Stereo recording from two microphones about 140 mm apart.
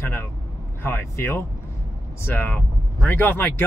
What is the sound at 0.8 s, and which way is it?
Speech, 15° left (ahead or behind).